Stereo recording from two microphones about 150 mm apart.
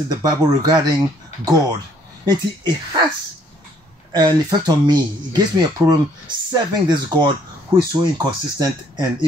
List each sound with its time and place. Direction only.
0.1 s speech: 25° right (ahead or behind)
4.1 s speech: 25° right (ahead or behind)